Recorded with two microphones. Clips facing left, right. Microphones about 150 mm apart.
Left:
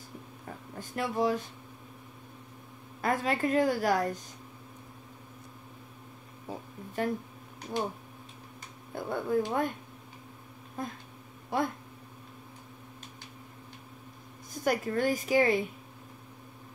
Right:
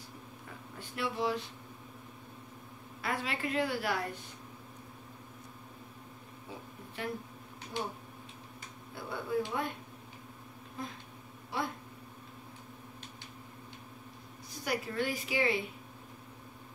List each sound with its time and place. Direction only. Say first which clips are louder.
0.7 s a woman's voice: left 5 dB; 45° left (ahead or behind)
3.0 s a woman's voice: left 7 dB; 45° left (ahead or behind)
7.0 s a woman's voice: left 8 dB; 45° left (ahead or behind)
8.9 s a woman's voice: left 5 dB; 50° left (ahead or behind)
10.8 s a woman's voice: left 5 dB; 50° left (ahead or behind)
14.5 s a woman's voice: left 7 dB; 45° left (ahead or behind)